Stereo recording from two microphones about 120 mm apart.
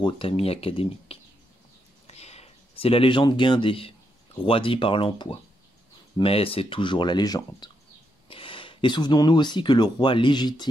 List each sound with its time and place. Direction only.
0.0 s speech: 50° left (ahead or behind)
2.0 s a sound: 60° left (ahead or behind)
4.5 s speech: 45° left (ahead or behind)
8.3 s speech: 45° left (ahead or behind)